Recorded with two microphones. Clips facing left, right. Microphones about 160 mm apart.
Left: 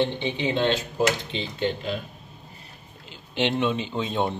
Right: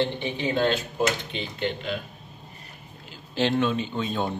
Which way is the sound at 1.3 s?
35° left (ahead or behind).